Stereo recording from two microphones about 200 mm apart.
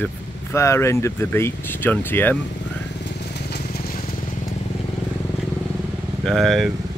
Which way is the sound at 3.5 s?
50° left (ahead or behind).